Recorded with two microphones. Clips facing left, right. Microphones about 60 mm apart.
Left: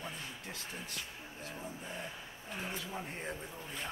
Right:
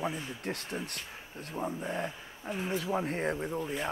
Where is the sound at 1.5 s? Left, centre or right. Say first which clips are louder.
Right 12 dB; right.